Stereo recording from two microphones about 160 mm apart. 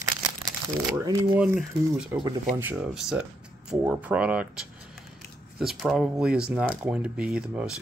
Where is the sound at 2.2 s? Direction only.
20° right (ahead or behind).